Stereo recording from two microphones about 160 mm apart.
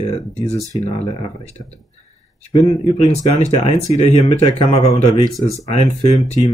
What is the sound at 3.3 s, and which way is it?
Speech, 40° left (ahead or behind).